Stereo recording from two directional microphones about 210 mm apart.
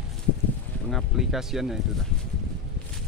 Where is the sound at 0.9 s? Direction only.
Centre (ahead or behind).